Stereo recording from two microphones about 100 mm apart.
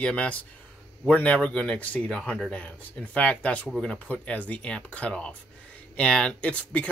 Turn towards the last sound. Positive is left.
turn(degrees=10)  # may be behind; listen again after turning